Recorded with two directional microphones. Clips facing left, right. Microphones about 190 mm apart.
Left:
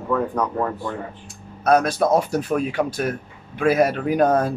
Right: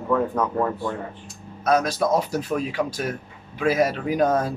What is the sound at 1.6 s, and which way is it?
Speech, 55° left (ahead or behind).